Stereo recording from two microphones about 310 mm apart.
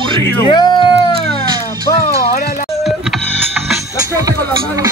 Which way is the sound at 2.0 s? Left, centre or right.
Centre.